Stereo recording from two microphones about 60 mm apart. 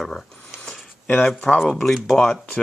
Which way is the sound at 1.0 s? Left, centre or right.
Centre.